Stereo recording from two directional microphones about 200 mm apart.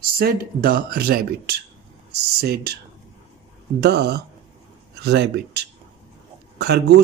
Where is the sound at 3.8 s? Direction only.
55° right (ahead or behind).